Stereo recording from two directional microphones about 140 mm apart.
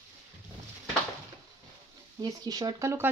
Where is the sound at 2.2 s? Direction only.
30° right (ahead or behind).